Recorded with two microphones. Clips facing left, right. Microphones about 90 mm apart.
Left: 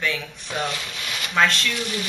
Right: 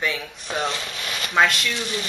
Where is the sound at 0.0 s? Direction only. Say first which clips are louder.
Even; 10° right (ahead or behind).